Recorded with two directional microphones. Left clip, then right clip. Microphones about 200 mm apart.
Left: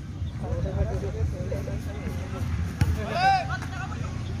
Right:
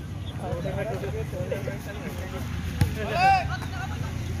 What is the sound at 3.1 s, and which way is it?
Vehicle, 55° left (ahead or behind).